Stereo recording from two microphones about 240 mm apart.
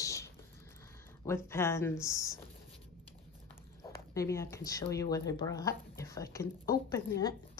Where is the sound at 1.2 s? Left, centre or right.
Centre.